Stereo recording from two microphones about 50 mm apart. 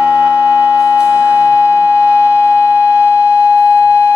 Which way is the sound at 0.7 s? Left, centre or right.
Left.